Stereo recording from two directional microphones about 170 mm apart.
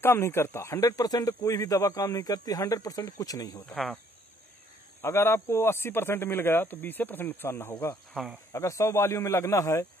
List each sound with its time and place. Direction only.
0.0 s speech: 15° left (ahead or behind)
3.6 s speech: centre (ahead or behind)
5.0 s speech: 15° left (ahead or behind)
8.1 s speech: centre (ahead or behind)
8.5 s speech: 20° left (ahead or behind)